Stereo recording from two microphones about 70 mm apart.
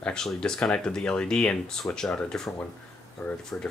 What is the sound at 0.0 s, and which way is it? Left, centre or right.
Speech, centre.